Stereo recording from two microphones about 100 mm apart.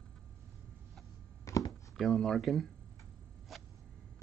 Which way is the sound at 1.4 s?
35° left (ahead or behind).